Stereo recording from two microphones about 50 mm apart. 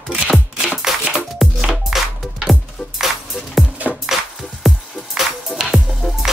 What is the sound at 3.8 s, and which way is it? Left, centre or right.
Music, right.